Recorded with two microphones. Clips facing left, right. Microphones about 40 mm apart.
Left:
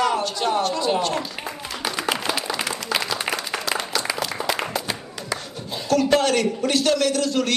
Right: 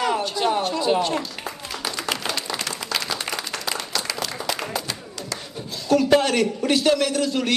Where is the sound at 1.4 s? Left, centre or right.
Centre.